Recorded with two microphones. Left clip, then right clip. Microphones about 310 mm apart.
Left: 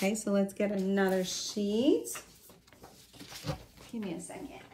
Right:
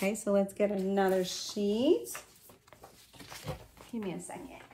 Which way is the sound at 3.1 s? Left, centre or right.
Right.